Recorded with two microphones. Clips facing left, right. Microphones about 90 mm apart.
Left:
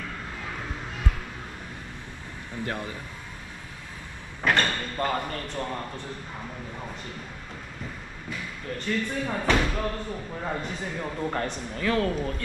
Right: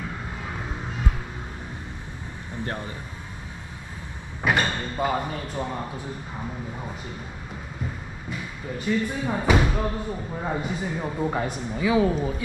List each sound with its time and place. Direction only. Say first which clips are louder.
0.0 s vehicle: right 2 dB; 15° right (ahead or behind)
4.4 s speech: right 1 dB; 10° right (ahead or behind)
8.3 s speech: right 1 dB; 10° right (ahead or behind)